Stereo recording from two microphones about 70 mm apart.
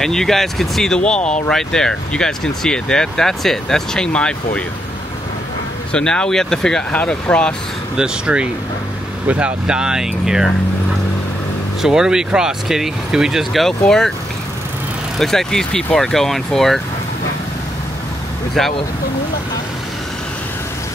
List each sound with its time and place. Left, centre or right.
0.0 s speech: centre
5.9 s speech: centre
6.9 s speech: centre
7.9 s speech: centre
11.8 s speech: centre
15.1 s speech: centre
18.6 s speech: centre